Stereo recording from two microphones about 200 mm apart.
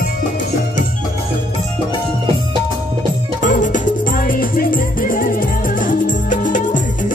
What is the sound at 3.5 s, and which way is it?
Music, 40° left (ahead or behind).